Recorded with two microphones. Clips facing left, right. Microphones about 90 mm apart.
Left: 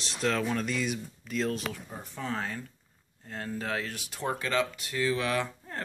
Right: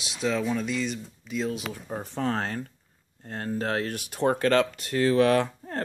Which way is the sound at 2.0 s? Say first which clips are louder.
Right 6 dB; 50° right (ahead or behind).